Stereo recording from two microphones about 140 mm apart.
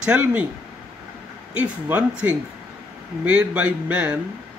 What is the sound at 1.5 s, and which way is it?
Speech, 10° right (ahead or behind).